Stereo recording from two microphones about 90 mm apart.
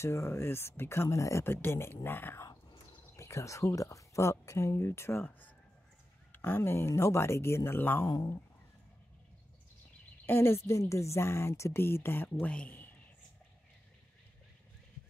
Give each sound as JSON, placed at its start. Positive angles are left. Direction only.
{"t": 0.0, "sound": "speech", "side_deg": 30}
{"t": 3.2, "sound": "speech", "side_deg": 35}
{"t": 10.2, "sound": "speech", "side_deg": 25}